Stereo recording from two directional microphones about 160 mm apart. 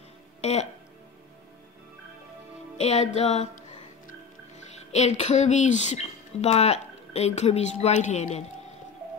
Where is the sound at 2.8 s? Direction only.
45° left (ahead or behind).